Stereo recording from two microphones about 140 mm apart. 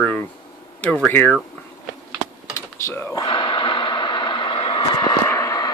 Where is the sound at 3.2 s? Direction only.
35° left (ahead or behind).